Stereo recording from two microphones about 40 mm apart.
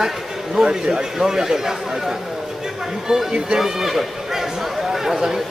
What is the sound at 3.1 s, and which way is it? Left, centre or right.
Speech, centre.